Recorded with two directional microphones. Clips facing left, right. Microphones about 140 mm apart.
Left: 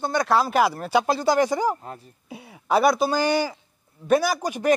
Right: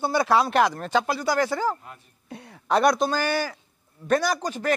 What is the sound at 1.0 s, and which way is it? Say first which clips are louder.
Speech: left 4 dB; 30° left (ahead or behind).